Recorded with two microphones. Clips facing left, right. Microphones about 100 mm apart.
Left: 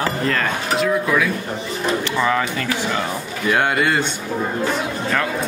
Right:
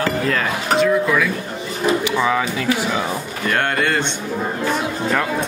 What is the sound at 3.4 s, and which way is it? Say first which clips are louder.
Speech: left 2 dB; 5° left (ahead or behind).